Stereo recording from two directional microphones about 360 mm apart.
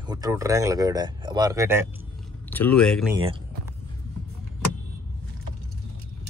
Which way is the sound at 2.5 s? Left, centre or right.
Centre.